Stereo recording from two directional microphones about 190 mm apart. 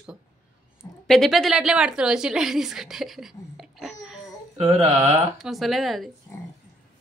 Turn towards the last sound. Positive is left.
turn(degrees=0)  # may be behind; listen again after turning